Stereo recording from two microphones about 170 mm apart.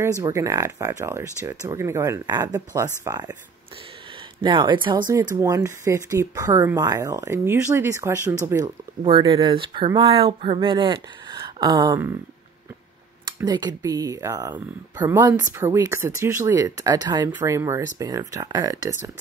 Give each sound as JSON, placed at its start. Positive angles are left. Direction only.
{"t": 0.2, "sound": "speech", "side_deg": -20}
{"t": 4.4, "sound": "speech", "side_deg": -30}
{"t": 13.5, "sound": "speech", "side_deg": -20}